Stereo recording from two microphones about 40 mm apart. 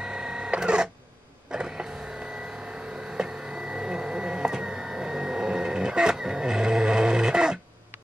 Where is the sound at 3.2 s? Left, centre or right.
Centre.